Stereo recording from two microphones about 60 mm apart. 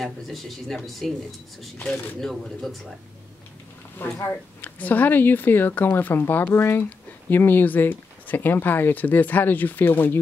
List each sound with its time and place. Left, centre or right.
0.0 s speech: centre
2.1 s speech: centre
4.0 s speech: left